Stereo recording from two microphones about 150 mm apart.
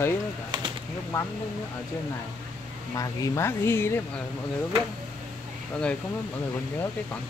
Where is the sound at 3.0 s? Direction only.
20° left (ahead or behind).